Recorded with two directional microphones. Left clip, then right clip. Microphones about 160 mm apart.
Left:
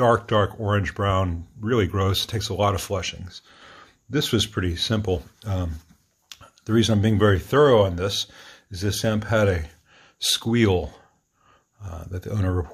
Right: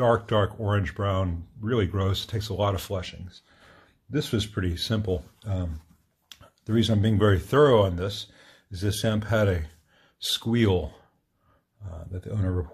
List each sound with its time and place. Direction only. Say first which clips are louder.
0.0 s speech: left 3 dB; 15° left (ahead or behind); by 4.5 s 30° left (ahead or behind)
4.6 s speech: left 4 dB; 15° left (ahead or behind)
5.0 s speech: left 4 dB; 25° left (ahead or behind)
6.2 s speech: left 5 dB; 15° left (ahead or behind)
8.0 s speech: left 7 dB; 35° left (ahead or behind)
8.7 s speech: left 3 dB; 10° left (ahead or behind)
9.9 s speech: left 5 dB; 25° left (ahead or behind)
11.8 s speech: left 5 dB; 30° left (ahead or behind)